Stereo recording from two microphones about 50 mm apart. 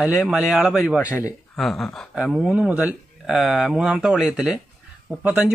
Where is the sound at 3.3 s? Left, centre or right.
Centre.